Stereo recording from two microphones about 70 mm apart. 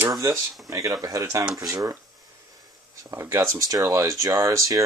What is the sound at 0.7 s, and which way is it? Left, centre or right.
Speech, right.